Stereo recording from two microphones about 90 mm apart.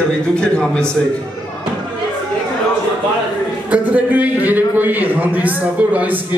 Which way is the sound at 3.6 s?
15° right (ahead or behind).